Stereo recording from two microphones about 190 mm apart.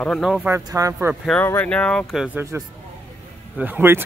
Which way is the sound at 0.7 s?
15° right (ahead or behind).